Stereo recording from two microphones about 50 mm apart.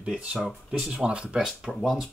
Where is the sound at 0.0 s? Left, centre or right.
Right.